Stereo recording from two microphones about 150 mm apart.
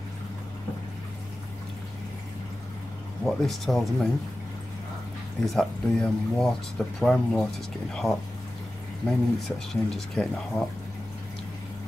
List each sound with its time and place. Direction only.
3.3 s speech: centre (ahead or behind)
5.4 s speech: 5° left (ahead or behind)